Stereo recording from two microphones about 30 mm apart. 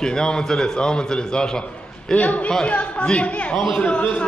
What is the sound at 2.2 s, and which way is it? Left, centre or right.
Speech, left.